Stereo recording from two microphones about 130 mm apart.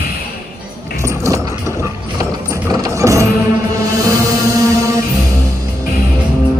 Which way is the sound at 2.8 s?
25° right (ahead or behind).